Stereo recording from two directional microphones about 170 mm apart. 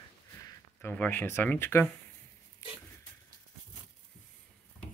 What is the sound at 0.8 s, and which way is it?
Speech, 10° left (ahead or behind).